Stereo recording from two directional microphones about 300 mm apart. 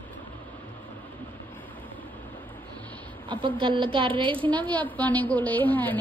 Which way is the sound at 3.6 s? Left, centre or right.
Centre.